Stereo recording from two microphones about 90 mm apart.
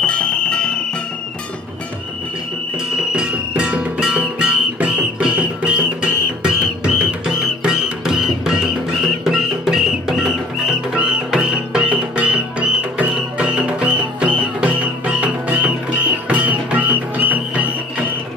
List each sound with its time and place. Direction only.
0.0 s music: 10° left (ahead or behind)
3.1 s music: 10° right (ahead or behind)